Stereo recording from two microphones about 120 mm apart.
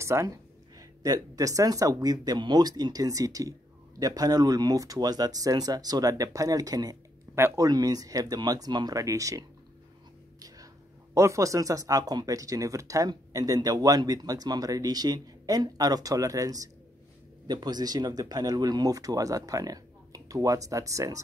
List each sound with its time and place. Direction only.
0.0 s speech: 25° right (ahead or behind)
11.1 s speech: 25° right (ahead or behind)